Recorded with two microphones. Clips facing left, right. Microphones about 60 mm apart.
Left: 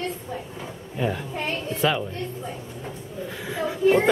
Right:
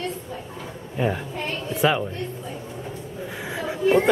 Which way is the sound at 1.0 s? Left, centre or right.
Centre.